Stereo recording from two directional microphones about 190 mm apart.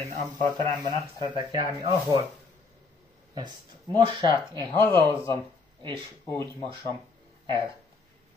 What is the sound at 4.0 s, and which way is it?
Speech, 25° right (ahead or behind).